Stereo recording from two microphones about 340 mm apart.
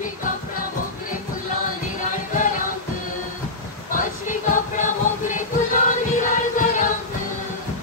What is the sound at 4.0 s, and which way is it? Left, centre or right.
Music, left.